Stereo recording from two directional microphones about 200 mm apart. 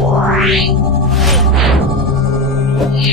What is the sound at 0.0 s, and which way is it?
Music, centre (ahead or behind).